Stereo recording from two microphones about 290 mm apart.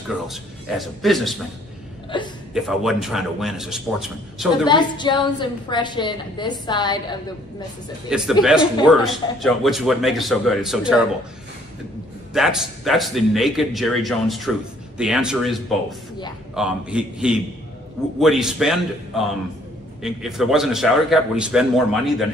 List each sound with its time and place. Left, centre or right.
0.3 s a man's voice: centre
2.1 s a woman's voice: centre
2.5 s a man's voice: centre
4.6 s a woman's voice: centre
8.1 s a man's voice: centre
12.4 s a man's voice: centre